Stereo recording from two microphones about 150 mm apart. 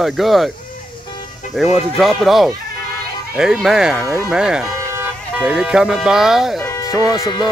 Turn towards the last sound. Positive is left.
turn(degrees=30)  # may be behind; listen again after turning